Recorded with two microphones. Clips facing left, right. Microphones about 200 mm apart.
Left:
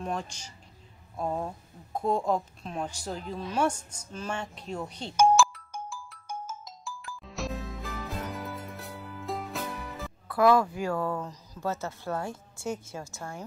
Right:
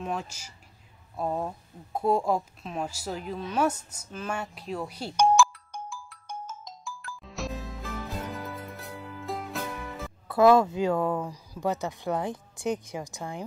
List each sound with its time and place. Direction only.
0.0 s speech: 5° right (ahead or behind)
5.1 s music: 5° left (ahead or behind)
7.2 s music: centre (ahead or behind)
10.2 s speech: 25° right (ahead or behind)